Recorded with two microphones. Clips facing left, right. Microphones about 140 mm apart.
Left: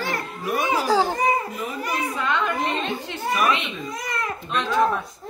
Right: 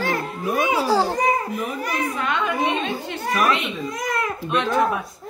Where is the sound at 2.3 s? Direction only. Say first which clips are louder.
Right 1 dB; 5° right (ahead or behind).